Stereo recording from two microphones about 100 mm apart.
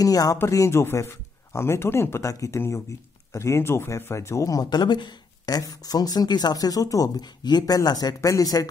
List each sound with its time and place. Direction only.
0.0 s speech: 35° left (ahead or behind)